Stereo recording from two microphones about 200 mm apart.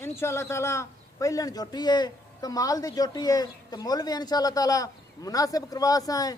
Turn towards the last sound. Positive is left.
turn(degrees=20)  # may be behind; listen again after turning